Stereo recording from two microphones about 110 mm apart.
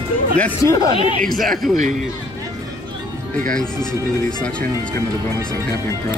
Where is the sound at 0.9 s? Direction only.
55° left (ahead or behind).